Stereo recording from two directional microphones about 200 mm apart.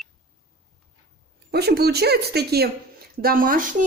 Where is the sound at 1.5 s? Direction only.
55° right (ahead or behind).